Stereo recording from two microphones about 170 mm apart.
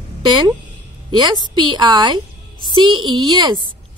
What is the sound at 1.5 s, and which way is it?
A child's voice, 25° right (ahead or behind).